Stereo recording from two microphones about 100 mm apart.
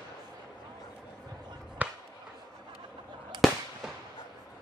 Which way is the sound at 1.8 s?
15° right (ahead or behind).